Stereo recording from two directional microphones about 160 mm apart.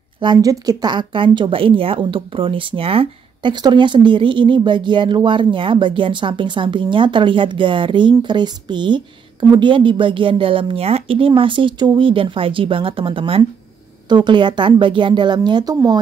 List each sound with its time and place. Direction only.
0.2 s speech: 25° right (ahead or behind)